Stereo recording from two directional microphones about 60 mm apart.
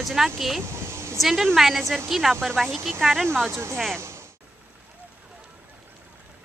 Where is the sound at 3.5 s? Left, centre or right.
Right.